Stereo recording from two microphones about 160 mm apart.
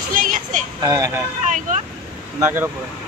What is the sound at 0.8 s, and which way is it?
Speech, 25° right (ahead or behind).